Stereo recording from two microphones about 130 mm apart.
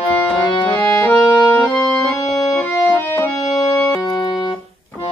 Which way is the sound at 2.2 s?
25° left (ahead or behind).